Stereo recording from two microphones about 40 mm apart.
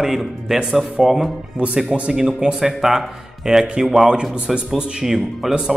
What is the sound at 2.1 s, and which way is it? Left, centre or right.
Speech, centre.